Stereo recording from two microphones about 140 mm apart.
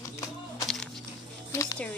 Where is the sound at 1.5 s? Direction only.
20° left (ahead or behind).